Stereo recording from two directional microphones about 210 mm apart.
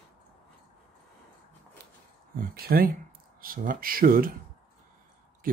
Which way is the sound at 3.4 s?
45° right (ahead or behind).